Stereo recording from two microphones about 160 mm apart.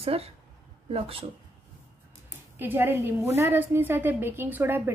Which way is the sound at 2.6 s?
15° right (ahead or behind).